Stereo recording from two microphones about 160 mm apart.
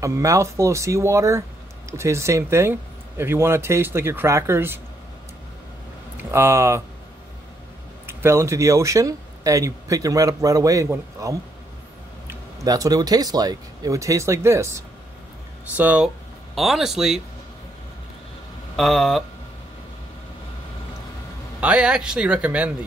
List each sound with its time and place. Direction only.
0.0 s speech: 20° right (ahead or behind)
6.1 s speech: 15° right (ahead or behind)
8.1 s speech: 15° right (ahead or behind)
18.8 s speech: centre (ahead or behind)
21.5 s speech: 5° right (ahead or behind)